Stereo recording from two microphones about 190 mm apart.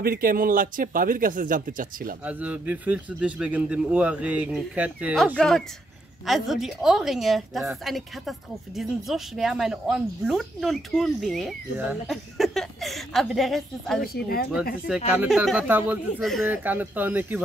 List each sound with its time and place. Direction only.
0.0 s speech: 50° right (ahead or behind)
2.2 s speech: 10° right (ahead or behind)
5.1 s a woman's voice: 5° left (ahead or behind)
14.0 s speech: 55° left (ahead or behind)
15.1 s a woman's voice: centre (ahead or behind)
16.4 s speech: 10° right (ahead or behind)